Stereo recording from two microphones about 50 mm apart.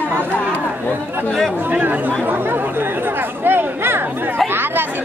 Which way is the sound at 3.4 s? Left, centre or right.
Right.